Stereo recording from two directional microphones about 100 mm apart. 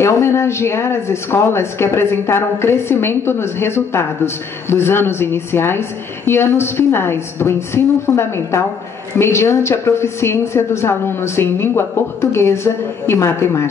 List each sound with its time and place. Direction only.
0.0 s a woman's voice: 25° left (ahead or behind)